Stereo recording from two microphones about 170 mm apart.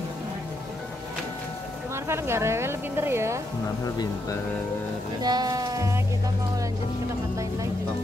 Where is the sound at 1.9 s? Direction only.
15° right (ahead or behind).